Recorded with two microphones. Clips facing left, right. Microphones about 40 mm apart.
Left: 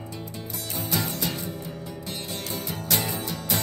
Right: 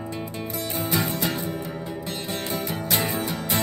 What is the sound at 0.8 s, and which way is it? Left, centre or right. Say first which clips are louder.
Music: right 3 dB; right.